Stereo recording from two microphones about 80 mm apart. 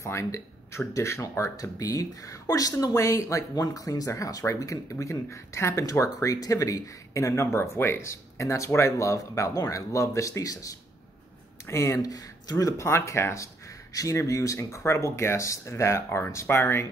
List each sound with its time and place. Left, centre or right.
0.0 s speech: left